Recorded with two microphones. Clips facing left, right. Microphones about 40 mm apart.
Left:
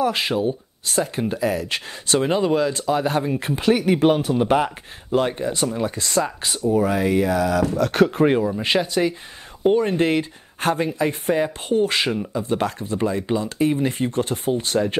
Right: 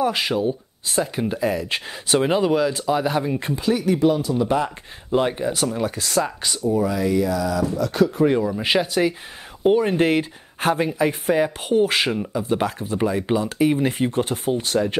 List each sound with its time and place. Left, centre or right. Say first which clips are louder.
0.1 s speech: even; centre
0.8 s speech: even; centre
3.5 s speech: left 3 dB; left
5.1 s speech: even; centre
6.7 s speech: left 2 dB; left
8.4 s speech: even; centre
14.3 s speech: even; centre